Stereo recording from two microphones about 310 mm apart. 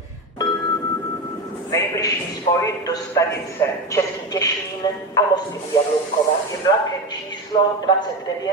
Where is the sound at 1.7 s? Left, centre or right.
Centre.